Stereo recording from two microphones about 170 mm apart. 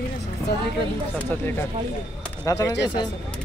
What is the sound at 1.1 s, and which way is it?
Speech, 10° left (ahead or behind).